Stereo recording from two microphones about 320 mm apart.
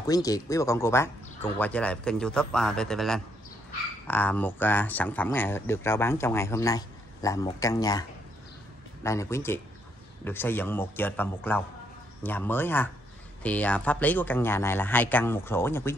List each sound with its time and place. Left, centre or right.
0.0 s speech: centre
9.0 s speech: centre